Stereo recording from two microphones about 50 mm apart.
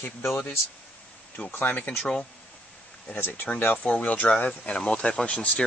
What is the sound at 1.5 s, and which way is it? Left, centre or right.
Speech, left.